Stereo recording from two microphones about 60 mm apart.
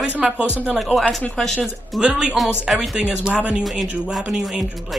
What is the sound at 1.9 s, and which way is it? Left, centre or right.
Speech, centre.